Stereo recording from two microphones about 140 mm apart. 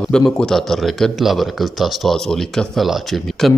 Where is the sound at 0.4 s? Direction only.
5° left (ahead or behind).